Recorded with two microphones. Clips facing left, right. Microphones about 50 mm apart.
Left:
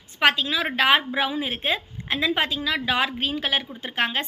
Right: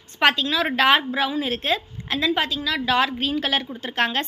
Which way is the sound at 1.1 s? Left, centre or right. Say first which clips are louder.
Right 2 dB; centre.